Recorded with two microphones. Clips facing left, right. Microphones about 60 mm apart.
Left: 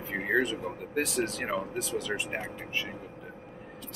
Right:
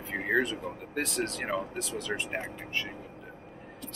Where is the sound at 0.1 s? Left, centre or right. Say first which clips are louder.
Even; centre.